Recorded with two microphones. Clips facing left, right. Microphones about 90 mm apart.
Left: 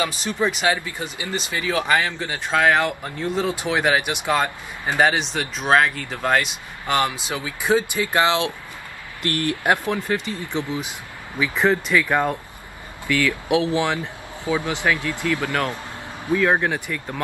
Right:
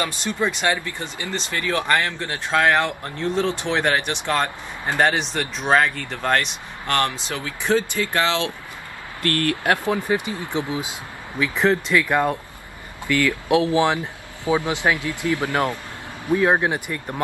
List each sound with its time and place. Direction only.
0.0 s speech: 5° left (ahead or behind); by 9.8 s 20° left (ahead or behind)
9.8 s speech: 15° right (ahead or behind)
11.3 s speech: 15° left (ahead or behind)
13.0 s speech: 20° right (ahead or behind)